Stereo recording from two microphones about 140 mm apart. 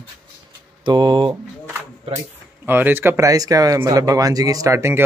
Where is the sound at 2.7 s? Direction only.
15° right (ahead or behind).